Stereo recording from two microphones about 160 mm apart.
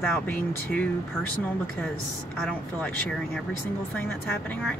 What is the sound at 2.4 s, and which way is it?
Speech, 5° left (ahead or behind).